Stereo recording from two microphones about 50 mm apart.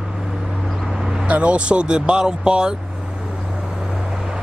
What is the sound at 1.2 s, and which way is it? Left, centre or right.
Speech, right.